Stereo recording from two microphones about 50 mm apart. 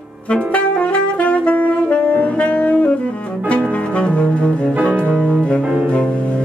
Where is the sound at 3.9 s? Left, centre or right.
Left.